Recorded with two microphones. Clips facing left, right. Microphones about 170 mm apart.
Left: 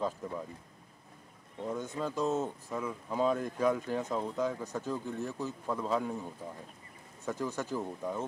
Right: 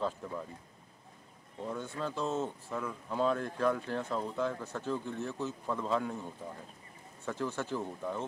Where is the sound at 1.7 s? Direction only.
15° left (ahead or behind).